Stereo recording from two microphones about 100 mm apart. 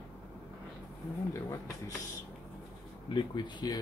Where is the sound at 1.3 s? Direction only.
30° left (ahead or behind).